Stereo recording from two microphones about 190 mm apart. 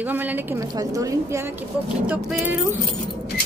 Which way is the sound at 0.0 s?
10° right (ahead or behind).